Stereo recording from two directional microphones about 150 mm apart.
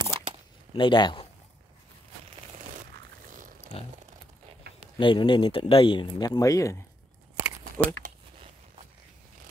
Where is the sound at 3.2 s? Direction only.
65° right (ahead or behind).